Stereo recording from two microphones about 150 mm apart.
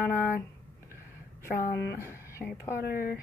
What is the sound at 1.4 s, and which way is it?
Speech, 75° left (ahead or behind).